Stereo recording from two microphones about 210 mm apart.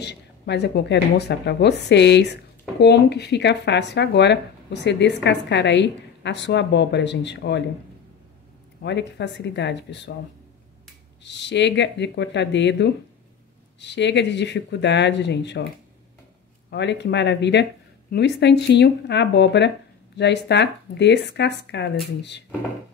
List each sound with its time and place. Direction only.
0.0 s speech: 50° left (ahead or behind)
8.8 s speech: 55° left (ahead or behind)
11.2 s speech: 55° left (ahead or behind)
16.7 s speech: 55° left (ahead or behind)